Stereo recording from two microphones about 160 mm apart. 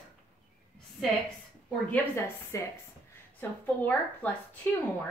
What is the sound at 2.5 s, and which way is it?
A woman's voice, 20° left (ahead or behind).